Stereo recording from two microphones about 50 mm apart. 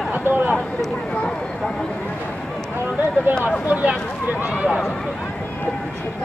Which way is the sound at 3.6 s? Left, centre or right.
Right.